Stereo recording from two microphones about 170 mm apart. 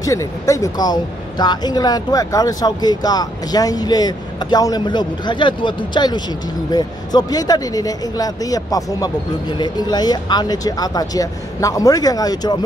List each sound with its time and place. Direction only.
0.0 s speech: 20° left (ahead or behind)